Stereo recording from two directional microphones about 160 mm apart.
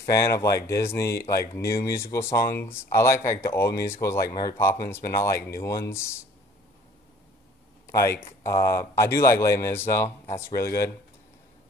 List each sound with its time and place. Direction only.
0.0 s speech: 20° left (ahead or behind)
7.8 s a sound: 20° left (ahead or behind)
8.2 s speech: 15° left (ahead or behind)